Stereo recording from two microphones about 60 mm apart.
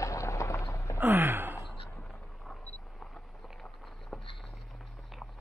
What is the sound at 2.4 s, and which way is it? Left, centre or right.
Single-lens reflex camera, centre.